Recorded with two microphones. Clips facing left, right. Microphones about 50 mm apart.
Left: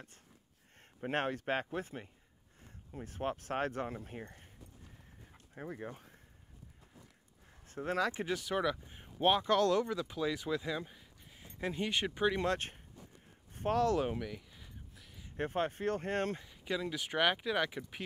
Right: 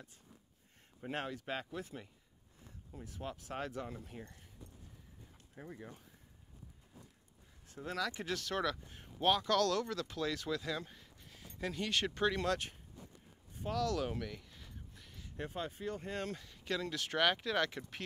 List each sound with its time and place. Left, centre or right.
1.0 s speech: left
5.3 s a sound: left
7.6 s speech: left
8.3 s speech: centre
12.4 s speech: left
13.5 s a sound: left
13.8 s speech: left
14.1 s a sound: centre
15.3 s speech: left
16.4 s speech: centre